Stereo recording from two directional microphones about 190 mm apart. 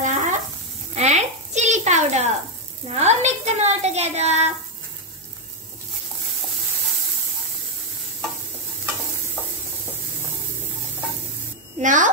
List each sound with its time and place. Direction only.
0.0 s sizzle: 40° right (ahead or behind)
0.9 s a sound: 35° right (ahead or behind)
2.9 s a woman's voice: 35° right (ahead or behind)
11.8 s a woman's voice: 40° right (ahead or behind)